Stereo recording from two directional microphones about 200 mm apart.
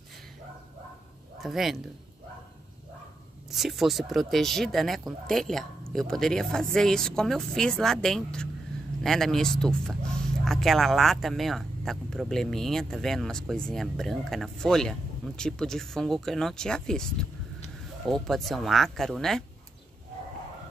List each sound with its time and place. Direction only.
1.4 s speech: centre (ahead or behind)
3.4 s speech: centre (ahead or behind)
18.1 s speech: centre (ahead or behind)